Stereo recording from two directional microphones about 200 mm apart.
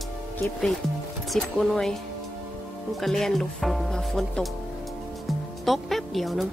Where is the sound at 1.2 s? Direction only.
Centre (ahead or behind).